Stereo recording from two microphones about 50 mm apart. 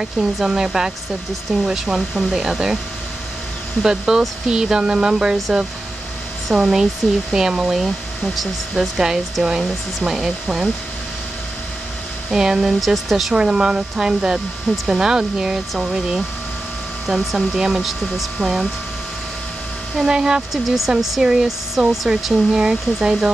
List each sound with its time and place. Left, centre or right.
0.0 s speech: centre
3.8 s speech: centre
12.3 s speech: centre
12.8 s speech: centre
13.3 s speech: centre
20.0 s speech: centre
20.5 s speech: centre